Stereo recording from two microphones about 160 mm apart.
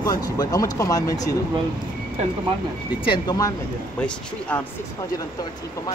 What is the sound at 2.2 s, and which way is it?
Speech, 45° right (ahead or behind).